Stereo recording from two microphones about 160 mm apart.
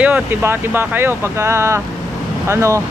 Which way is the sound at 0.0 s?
10° right (ahead or behind).